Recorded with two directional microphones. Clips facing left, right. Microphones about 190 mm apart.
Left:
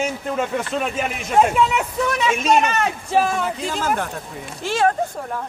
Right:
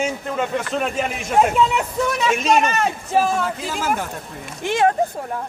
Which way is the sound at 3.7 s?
10° right (ahead or behind).